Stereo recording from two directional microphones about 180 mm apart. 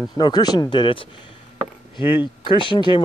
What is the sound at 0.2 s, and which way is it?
Speech, 20° left (ahead or behind).